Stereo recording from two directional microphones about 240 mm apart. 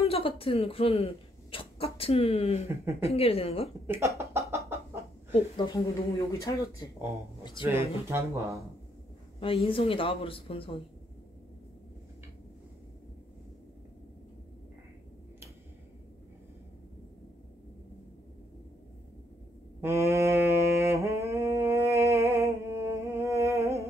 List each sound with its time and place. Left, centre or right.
0.0 s speech: left
3.8 s speech: centre
4.2 s a sound: centre
5.3 s speech: centre
7.6 s speech: centre
9.4 s speech: left
19.8 s humming: centre